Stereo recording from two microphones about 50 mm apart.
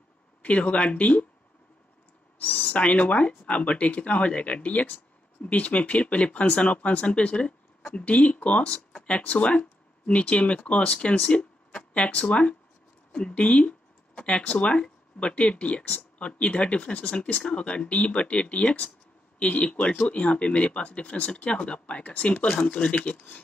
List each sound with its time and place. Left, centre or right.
0.4 s speech: left
2.3 s speech: left